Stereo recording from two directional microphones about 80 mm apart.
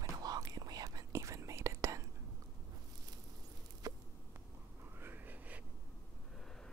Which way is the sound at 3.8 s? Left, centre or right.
Right.